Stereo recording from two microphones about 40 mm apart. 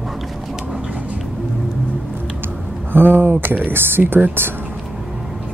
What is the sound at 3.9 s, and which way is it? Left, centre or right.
Speech, right.